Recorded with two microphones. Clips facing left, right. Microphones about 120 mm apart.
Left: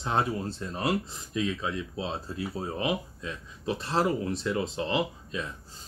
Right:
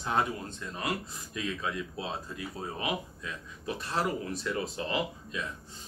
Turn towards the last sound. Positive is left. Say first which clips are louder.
# left 3 dB
turn(degrees=30)  # may be behind; listen again after turning